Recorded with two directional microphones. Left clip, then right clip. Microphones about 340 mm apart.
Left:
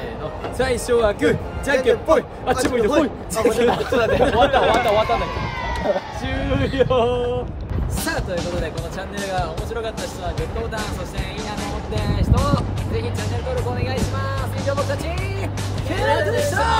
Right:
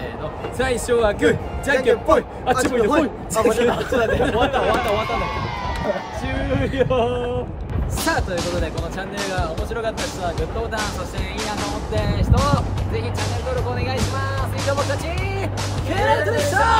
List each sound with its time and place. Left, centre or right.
0.6 s speech: centre
3.9 s speech: left
6.8 s speech: centre
9.4 s speech: centre
11.9 s speech: centre
15.9 s speech: centre